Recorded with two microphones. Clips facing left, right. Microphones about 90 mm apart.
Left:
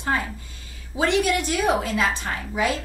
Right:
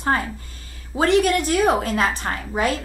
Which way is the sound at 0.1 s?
50° right (ahead or behind).